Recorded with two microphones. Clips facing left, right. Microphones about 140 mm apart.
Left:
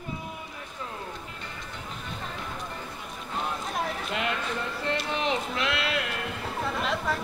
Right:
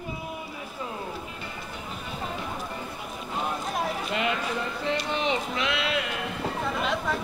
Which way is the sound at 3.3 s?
5° right (ahead or behind).